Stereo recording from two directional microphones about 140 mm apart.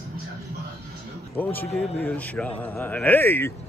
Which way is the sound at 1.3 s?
15° left (ahead or behind).